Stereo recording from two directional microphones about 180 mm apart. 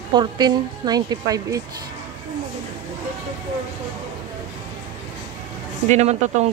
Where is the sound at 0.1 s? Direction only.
25° right (ahead or behind).